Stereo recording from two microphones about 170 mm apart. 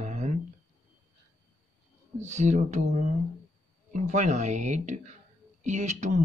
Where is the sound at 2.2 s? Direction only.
45° right (ahead or behind).